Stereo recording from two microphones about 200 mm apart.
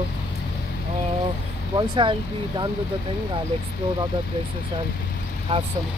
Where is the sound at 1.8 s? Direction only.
25° right (ahead or behind).